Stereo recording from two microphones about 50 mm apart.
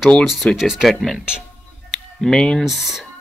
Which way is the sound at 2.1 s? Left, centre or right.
Centre.